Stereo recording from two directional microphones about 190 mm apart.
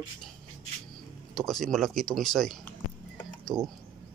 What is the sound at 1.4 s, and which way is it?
Speech, centre (ahead or behind).